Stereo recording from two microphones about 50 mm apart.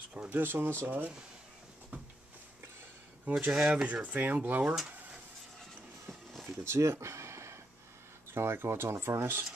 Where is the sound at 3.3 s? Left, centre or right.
Right.